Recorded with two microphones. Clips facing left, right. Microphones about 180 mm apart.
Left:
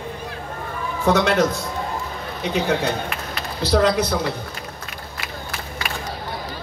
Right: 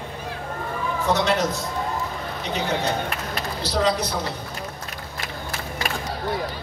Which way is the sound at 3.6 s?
55° left (ahead or behind).